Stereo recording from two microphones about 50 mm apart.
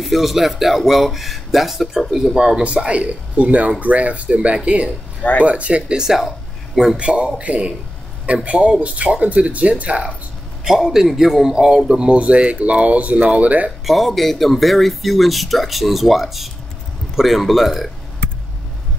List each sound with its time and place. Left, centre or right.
0.0 s speech: centre
2.3 s a man's voice: centre
7.0 s speech: right
10.6 s a man's voice: centre; by 13.7 s right
13.8 s speech: centre